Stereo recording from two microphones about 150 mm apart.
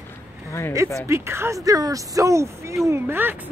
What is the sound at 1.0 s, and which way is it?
Speech, 15° right (ahead or behind).